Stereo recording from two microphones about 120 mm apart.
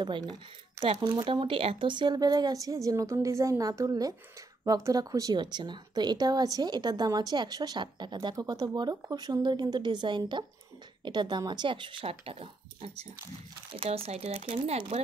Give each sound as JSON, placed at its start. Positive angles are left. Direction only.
{"t": 0.0, "sound": "speech", "side_deg": -40}